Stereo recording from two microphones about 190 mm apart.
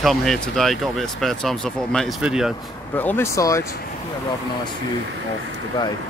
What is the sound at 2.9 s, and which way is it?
Speech, 10° left (ahead or behind).